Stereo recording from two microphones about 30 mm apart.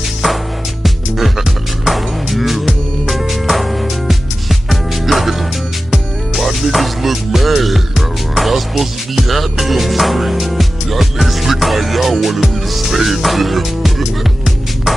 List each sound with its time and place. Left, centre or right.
0.8 s music: centre